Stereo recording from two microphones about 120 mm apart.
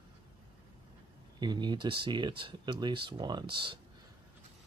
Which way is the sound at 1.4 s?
35° right (ahead or behind).